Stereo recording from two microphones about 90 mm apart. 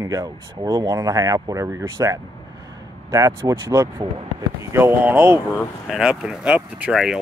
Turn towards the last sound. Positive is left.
turn(degrees=-5)  # may be behind; listen again after turning